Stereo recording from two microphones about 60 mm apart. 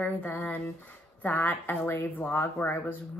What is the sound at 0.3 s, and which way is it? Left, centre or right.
Speech, left.